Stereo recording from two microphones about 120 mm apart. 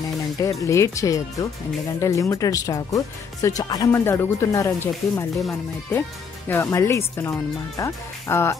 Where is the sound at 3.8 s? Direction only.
20° left (ahead or behind).